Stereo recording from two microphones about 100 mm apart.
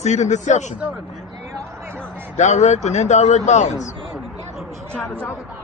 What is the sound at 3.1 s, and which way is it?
Speech, 90° left.